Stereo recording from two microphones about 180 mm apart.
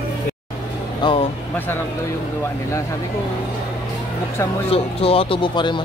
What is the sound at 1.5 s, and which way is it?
Speech, 10° left (ahead or behind).